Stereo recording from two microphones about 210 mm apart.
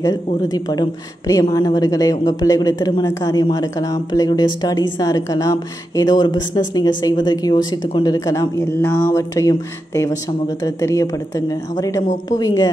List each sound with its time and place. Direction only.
0.0 s a woman's voice: 20° left (ahead or behind)